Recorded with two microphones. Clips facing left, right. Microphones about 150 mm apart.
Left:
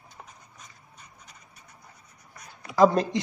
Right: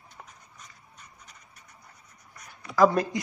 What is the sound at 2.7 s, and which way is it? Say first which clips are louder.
Speech: left 1 dB; 25° left (ahead or behind).